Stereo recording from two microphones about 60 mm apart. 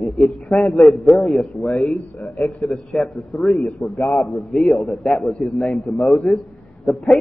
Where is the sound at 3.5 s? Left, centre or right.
Left.